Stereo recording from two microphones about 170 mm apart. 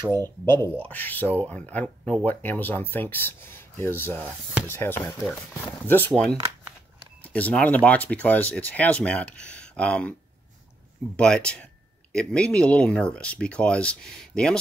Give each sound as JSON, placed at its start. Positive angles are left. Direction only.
{"t": 0.1, "sound": "speech", "side_deg": 15}
{"t": 7.3, "sound": "speech", "side_deg": 10}
{"t": 11.1, "sound": "speech", "side_deg": 5}